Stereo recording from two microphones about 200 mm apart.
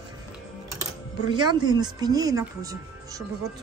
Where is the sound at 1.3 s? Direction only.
20° right (ahead or behind).